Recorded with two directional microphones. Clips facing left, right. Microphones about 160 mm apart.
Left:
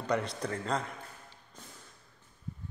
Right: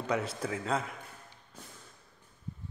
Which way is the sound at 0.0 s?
5° right (ahead or behind).